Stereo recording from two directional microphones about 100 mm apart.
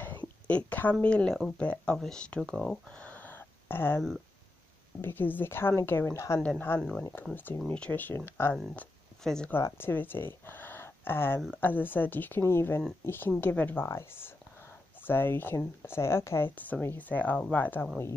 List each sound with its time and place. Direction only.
0.5 s a woman's voice: 15° left (ahead or behind)
5.0 s speech: 20° left (ahead or behind)
6.8 s a woman's voice: 10° left (ahead or behind)
9.2 s speech: 5° left (ahead or behind)
9.5 s speech: 25° left (ahead or behind)